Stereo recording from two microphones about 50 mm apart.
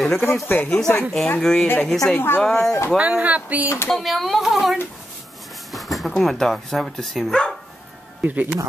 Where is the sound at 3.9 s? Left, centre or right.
Centre.